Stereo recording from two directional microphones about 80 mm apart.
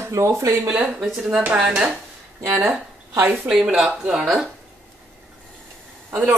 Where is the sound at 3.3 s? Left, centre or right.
Centre.